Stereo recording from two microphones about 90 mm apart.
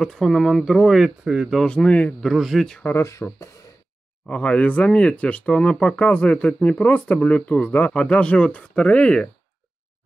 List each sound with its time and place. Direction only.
0.0 s speech: 5° left (ahead or behind)
1.6 s speech: 10° left (ahead or behind)
2.2 s speech: centre (ahead or behind)
2.8 s speech: 30° left (ahead or behind)
4.3 s speech: 15° left (ahead or behind)